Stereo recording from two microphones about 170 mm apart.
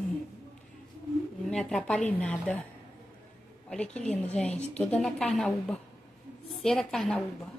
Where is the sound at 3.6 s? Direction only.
5° left (ahead or behind).